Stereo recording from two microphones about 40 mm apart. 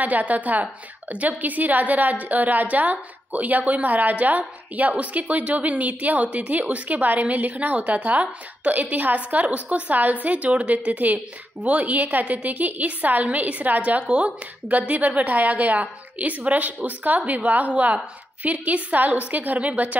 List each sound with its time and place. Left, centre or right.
0.0 s a woman's voice: right